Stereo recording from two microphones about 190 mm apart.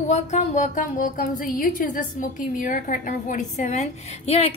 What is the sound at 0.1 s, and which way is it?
Speech, 35° left (ahead or behind).